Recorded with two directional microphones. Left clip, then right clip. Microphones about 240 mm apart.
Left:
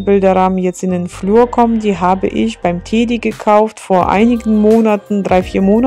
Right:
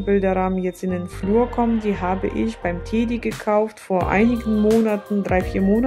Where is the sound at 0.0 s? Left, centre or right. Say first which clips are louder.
Left 9 dB; left.